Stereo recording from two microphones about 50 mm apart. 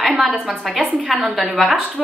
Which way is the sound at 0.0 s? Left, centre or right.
Centre.